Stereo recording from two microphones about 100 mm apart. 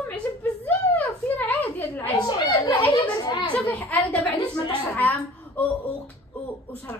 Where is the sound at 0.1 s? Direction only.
15° left (ahead or behind).